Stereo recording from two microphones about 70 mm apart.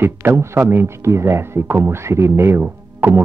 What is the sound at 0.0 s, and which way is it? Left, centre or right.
Speech, right.